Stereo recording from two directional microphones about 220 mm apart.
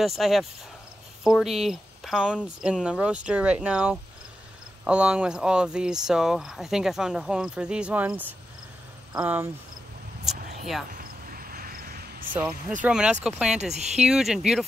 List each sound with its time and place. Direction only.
0.0 s speech: centre (ahead or behind)
10.9 s a sound: 40° right (ahead or behind)
12.3 s speech: 5° right (ahead or behind)
13.6 s speech: 30° right (ahead or behind)
14.0 s speech: 5° right (ahead or behind)